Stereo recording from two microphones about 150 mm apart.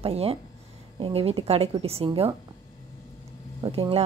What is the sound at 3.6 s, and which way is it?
Speech, 35° right (ahead or behind).